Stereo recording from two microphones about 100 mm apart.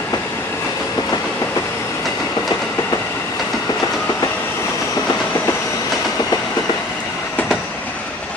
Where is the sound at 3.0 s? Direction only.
20° left (ahead or behind).